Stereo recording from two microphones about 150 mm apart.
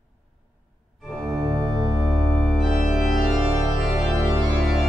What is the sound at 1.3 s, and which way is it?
Organ, 25° right (ahead or behind).